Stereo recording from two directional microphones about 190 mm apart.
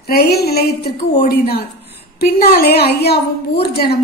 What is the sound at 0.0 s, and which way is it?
A woman's voice, 55° left (ahead or behind).